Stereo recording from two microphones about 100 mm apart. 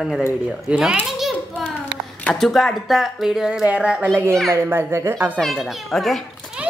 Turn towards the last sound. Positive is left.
turn(degrees=0)  # may be behind; listen again after turning